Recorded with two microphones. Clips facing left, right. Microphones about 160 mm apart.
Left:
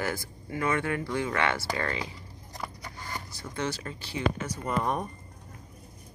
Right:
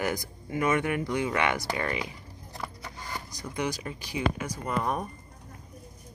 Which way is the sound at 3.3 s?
15° right (ahead or behind).